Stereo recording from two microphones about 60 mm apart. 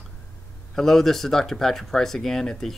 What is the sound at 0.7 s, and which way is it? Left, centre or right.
Speech, centre.